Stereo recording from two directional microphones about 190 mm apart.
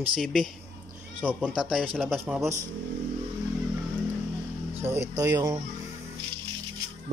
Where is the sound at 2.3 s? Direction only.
15° right (ahead or behind).